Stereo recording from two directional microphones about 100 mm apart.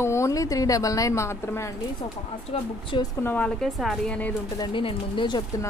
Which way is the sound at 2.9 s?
55° left (ahead or behind).